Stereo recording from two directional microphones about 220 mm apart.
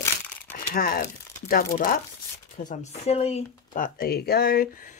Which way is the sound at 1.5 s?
40° left (ahead or behind).